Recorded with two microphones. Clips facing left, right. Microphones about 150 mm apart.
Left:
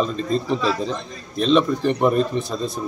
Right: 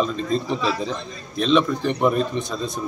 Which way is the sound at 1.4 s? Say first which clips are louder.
Left 2 dB; centre (ahead or behind).